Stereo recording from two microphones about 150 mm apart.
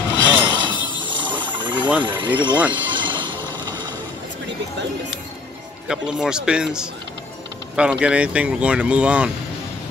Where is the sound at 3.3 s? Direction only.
15° left (ahead or behind).